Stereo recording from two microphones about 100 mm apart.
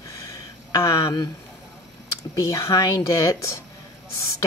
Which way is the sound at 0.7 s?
35° left (ahead or behind).